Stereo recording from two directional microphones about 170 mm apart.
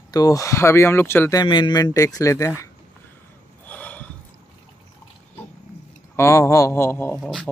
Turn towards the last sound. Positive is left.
turn(degrees=0)  # may be behind; listen again after turning